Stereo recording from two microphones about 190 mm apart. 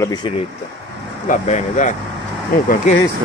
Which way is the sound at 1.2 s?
40° left (ahead or behind).